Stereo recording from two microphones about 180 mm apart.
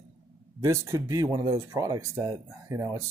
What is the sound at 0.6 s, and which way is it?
Speech, 15° right (ahead or behind).